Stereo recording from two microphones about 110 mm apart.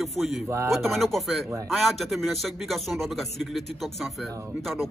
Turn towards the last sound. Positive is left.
turn(degrees=0)  # may be behind; listen again after turning